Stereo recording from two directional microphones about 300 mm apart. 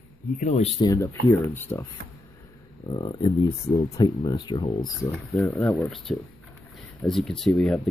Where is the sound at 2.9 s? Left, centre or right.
Centre.